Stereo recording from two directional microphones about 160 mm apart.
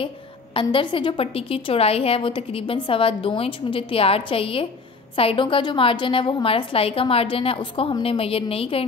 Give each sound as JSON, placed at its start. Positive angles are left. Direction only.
{"t": 0.6, "sound": "a woman's voice", "side_deg": 30}